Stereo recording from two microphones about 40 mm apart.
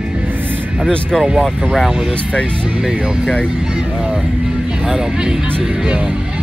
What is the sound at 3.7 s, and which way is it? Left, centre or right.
Speech, right.